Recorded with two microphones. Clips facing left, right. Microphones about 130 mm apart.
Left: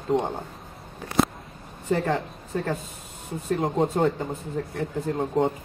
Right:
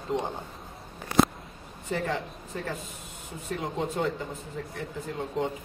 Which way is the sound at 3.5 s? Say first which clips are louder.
Left 8 dB; 40° left (ahead or behind).